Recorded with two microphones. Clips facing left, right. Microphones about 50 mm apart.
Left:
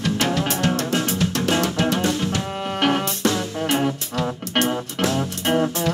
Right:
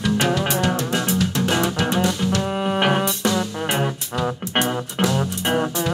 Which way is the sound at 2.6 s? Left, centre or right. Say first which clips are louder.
Even; right.